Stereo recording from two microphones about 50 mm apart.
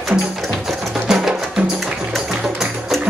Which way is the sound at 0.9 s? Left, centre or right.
Centre.